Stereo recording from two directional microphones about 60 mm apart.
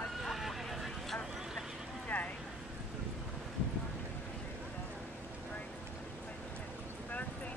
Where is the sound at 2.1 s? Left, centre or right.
Centre.